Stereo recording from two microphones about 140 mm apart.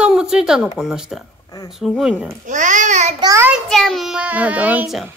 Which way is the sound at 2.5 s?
65° right (ahead or behind).